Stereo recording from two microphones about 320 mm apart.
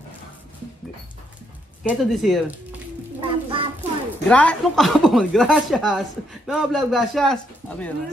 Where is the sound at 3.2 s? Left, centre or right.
Centre.